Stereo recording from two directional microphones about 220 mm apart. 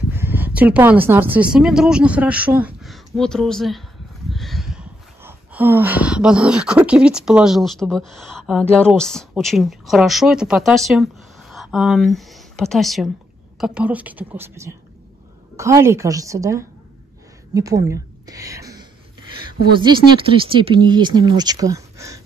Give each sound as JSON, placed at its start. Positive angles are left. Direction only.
{"t": 0.1, "sound": "a woman's voice", "side_deg": -10}